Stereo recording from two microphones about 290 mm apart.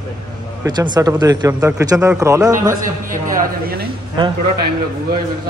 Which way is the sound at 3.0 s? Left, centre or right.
Right.